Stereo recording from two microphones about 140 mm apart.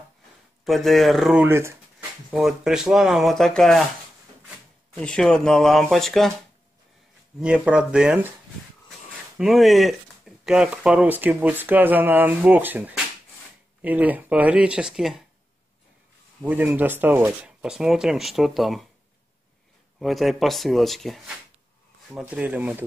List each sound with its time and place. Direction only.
0.7 s speech: centre (ahead or behind)
1.4 s speech: 20° right (ahead or behind)
2.3 s speech: 5° right (ahead or behind)
4.9 s speech: 5° left (ahead or behind)
7.3 s speech: 5° right (ahead or behind)
9.4 s speech: centre (ahead or behind)
16.4 s speech: 15° right (ahead or behind)
20.0 s speech: centre (ahead or behind)